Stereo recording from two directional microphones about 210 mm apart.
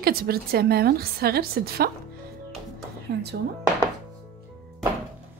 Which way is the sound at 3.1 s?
55° right (ahead or behind).